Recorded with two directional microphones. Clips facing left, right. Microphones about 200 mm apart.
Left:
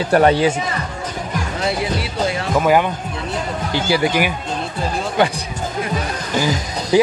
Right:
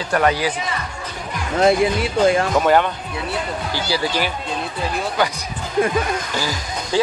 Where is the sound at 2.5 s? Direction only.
5° left (ahead or behind).